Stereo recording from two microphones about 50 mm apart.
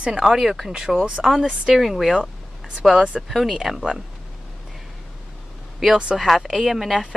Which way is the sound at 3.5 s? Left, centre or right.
Centre.